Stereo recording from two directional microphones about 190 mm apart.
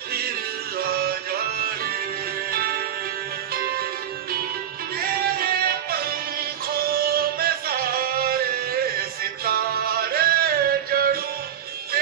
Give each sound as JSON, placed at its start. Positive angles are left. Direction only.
{"t": 0.7, "sound": "music", "side_deg": -55}
{"t": 5.4, "sound": "music", "side_deg": -55}
{"t": 10.1, "sound": "music", "side_deg": -55}